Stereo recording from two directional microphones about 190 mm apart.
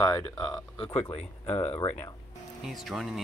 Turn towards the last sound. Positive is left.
turn(degrees=0)  # may be behind; listen again after turning